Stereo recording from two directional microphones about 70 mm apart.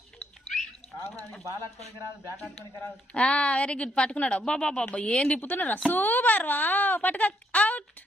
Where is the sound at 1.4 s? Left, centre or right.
Right.